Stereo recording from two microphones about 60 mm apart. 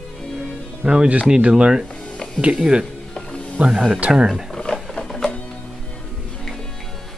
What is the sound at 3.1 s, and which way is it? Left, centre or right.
Music, centre.